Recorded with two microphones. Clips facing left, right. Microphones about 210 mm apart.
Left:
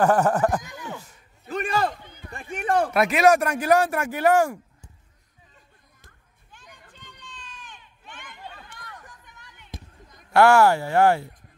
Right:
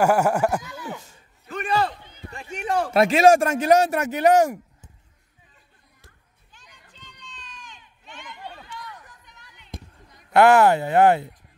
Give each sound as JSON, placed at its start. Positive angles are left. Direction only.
{"t": 0.0, "sound": "speech", "side_deg": -10}
{"t": 1.5, "sound": "a sound", "side_deg": 45}
{"t": 2.3, "sound": "a sound", "side_deg": 55}
{"t": 2.9, "sound": "speech", "side_deg": -30}
{"t": 6.5, "sound": "crowd", "side_deg": 55}
{"t": 10.3, "sound": "speech", "side_deg": -20}